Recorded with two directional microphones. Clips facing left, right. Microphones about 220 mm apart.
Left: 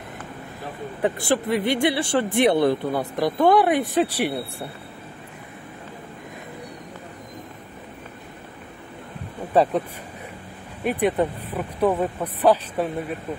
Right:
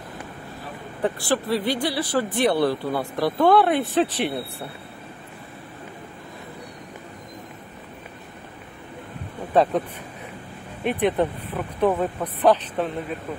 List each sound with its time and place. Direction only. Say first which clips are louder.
1.0 s speech: left 1 dB; 20° left (ahead or behind)
9.5 s speech: even; 10° left (ahead or behind)